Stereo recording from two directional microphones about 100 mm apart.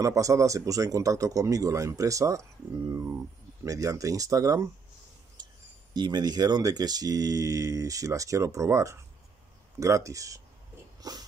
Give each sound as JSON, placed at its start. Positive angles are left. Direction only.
{"t": 0.0, "sound": "speech", "side_deg": -30}
{"t": 5.4, "sound": "a sound", "side_deg": -45}
{"t": 5.9, "sound": "speech", "side_deg": -45}
{"t": 11.0, "sound": "wheeze", "side_deg": -40}